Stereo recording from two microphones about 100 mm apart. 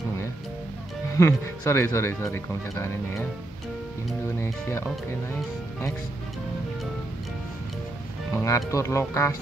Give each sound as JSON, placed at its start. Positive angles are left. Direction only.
{"t": 1.1, "sound": "speech", "side_deg": 30}
{"t": 4.4, "sound": "speech", "side_deg": 25}
{"t": 8.3, "sound": "speech", "side_deg": 30}